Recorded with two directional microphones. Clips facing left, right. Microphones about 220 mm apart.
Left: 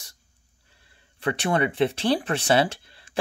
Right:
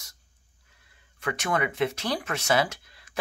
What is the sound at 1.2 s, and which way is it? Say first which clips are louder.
Speech: left 4 dB; 30° left (ahead or behind).